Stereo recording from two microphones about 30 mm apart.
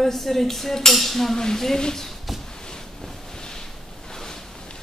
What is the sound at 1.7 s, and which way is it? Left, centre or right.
Speech, left.